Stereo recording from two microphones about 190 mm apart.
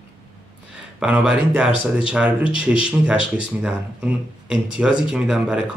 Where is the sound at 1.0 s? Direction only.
5° right (ahead or behind).